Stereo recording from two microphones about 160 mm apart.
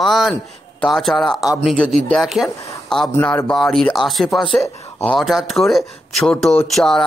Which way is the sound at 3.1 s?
10° left (ahead or behind).